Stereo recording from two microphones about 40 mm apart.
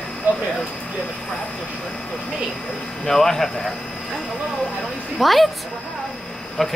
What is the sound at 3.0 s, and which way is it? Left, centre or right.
Speech, centre.